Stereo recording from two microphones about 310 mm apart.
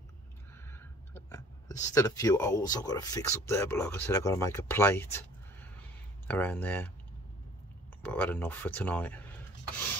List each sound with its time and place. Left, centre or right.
0.7 s speech: centre
8.0 s speech: centre